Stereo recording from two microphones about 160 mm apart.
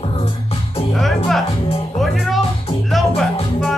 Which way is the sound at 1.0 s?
Centre (ahead or behind).